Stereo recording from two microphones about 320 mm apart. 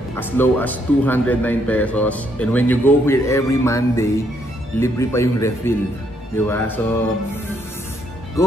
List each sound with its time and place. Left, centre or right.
0.2 s speech: centre